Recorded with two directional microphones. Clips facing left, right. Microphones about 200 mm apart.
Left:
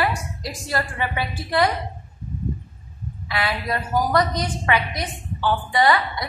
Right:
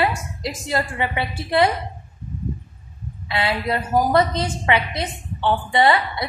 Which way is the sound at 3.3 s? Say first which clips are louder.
Right 3 dB; 25° right (ahead or behind).